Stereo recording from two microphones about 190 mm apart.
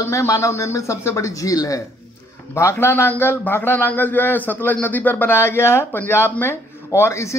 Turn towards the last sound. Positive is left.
turn(degrees=15)  # may be behind; listen again after turning